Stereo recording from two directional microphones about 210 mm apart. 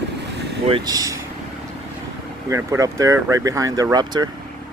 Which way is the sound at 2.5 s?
15° right (ahead or behind).